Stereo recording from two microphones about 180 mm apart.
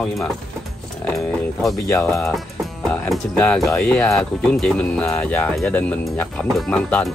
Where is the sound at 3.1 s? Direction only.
5° left (ahead or behind).